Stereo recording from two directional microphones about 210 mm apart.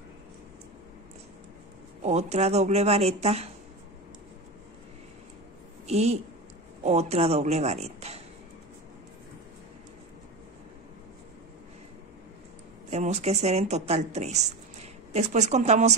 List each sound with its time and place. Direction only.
2.0 s a woman's voice: 30° right (ahead or behind)
5.9 s a woman's voice: 30° right (ahead or behind)
12.9 s a woman's voice: 30° right (ahead or behind)